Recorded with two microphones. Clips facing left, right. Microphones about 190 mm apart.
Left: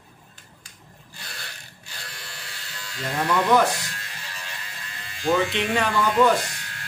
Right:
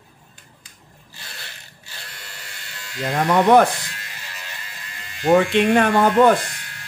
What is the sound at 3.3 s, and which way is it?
Speech, 55° right (ahead or behind).